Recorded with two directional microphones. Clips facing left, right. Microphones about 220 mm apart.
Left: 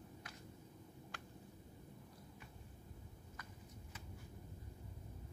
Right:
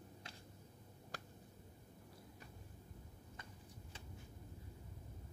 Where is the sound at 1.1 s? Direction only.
40° right (ahead or behind).